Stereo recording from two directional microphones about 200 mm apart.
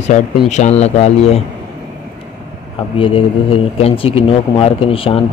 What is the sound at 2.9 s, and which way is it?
Speech, 25° left (ahead or behind).